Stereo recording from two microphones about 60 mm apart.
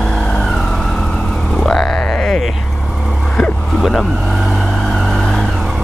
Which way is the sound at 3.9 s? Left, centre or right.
Centre.